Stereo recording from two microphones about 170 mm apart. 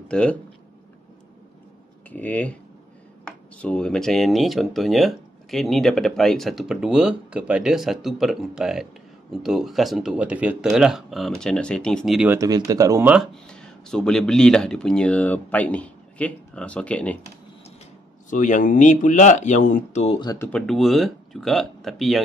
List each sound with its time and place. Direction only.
0.1 s speech: 5° left (ahead or behind)
2.0 s speech: 10° left (ahead or behind)
12.3 s speech: 20° right (ahead or behind)
13.1 s speech: centre (ahead or behind)
18.3 s speech: 50° left (ahead or behind)
20.3 s speech: 10° left (ahead or behind)